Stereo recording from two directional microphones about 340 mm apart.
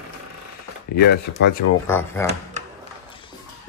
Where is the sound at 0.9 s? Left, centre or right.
Left.